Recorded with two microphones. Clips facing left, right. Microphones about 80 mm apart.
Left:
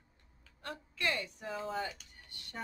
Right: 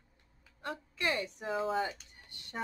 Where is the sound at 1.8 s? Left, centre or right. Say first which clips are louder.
Right 4 dB; right.